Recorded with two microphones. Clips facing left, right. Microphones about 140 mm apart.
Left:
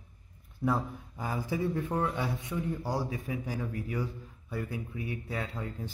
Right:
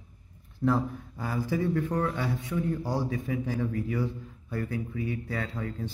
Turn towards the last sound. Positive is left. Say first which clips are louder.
# right 3 dB
turn(degrees=15)  # may be behind; listen again after turning